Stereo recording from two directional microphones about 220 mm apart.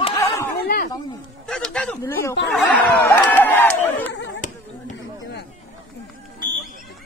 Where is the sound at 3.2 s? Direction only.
10° left (ahead or behind).